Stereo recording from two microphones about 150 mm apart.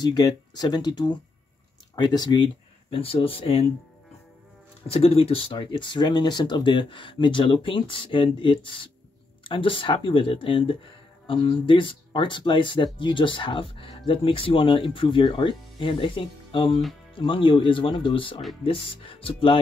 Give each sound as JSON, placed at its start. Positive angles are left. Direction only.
{"t": 0.0, "sound": "speech", "side_deg": 25}
{"t": 4.8, "sound": "speech", "side_deg": 40}